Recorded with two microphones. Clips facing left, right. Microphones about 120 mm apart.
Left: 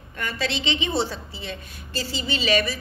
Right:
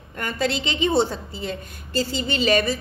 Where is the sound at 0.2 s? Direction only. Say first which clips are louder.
Right 3 dB; 50° right (ahead or behind).